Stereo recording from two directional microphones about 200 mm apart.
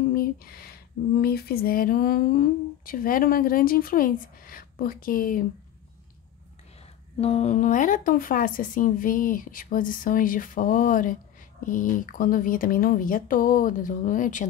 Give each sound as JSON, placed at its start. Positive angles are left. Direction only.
{"t": 0.1, "sound": "a sound", "side_deg": 50}
{"t": 1.2, "sound": "speech", "side_deg": 50}
{"t": 7.2, "sound": "speech", "side_deg": 30}